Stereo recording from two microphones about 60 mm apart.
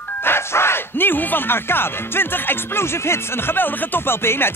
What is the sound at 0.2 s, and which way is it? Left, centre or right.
Speech, left.